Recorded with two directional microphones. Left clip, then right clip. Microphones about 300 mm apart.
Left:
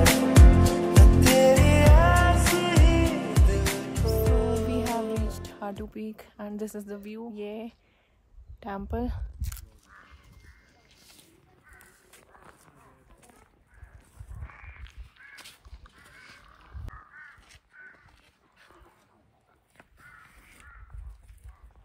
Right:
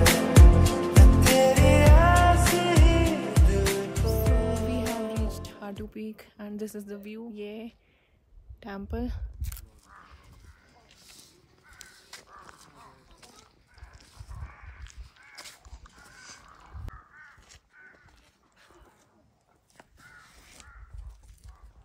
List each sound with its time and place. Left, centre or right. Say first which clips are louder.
0.0 s music: even; centre
8.5 s speech: left 3 dB; centre
14.8 s a sound: left 1 dB; centre
16.9 s crow: left 2 dB; centre
17.4 s crow: left 3 dB; right
19.8 s crow: even; right